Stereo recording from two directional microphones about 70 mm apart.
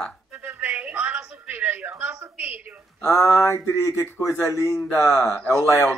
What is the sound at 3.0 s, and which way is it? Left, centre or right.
Speech, left.